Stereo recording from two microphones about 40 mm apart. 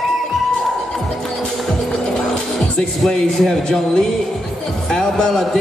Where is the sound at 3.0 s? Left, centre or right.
Centre.